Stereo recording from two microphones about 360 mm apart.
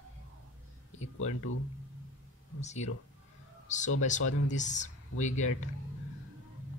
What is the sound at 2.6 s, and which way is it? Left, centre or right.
Speech, centre.